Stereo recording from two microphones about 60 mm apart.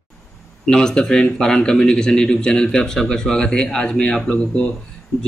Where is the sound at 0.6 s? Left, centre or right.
Centre.